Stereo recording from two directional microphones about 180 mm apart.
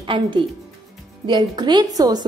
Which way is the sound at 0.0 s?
30° right (ahead or behind).